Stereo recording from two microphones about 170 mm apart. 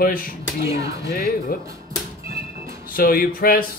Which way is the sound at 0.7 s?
20° right (ahead or behind).